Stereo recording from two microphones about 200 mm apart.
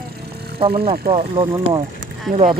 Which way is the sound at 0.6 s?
25° right (ahead or behind).